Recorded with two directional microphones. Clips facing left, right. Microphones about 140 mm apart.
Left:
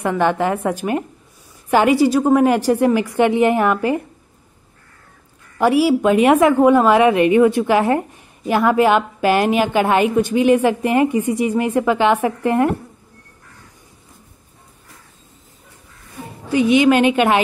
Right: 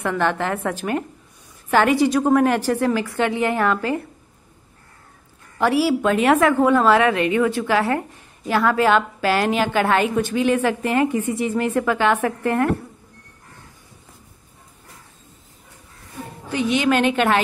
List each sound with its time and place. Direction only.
0.0 s a woman's voice: 15° left (ahead or behind)
5.6 s a woman's voice: 10° left (ahead or behind)
16.4 s a woman's voice: 10° left (ahead or behind)